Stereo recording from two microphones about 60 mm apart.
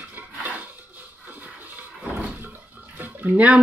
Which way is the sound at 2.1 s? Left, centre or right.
Right.